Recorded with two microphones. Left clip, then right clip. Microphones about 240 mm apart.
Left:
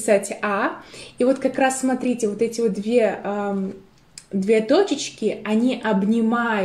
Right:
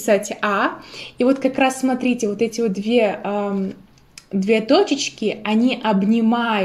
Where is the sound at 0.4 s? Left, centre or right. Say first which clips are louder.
Right 3 dB; right.